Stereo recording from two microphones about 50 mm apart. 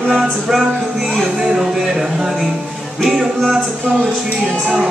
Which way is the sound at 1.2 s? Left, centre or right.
Centre.